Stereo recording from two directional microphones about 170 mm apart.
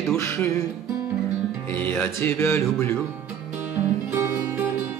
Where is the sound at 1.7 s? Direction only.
10° left (ahead or behind).